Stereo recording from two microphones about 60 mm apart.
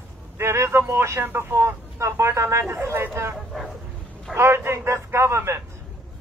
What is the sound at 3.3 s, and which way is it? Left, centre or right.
Speech, centre.